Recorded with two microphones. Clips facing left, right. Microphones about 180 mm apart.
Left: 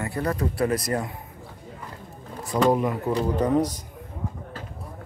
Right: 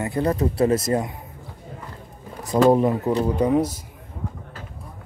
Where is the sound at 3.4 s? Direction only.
10° right (ahead or behind).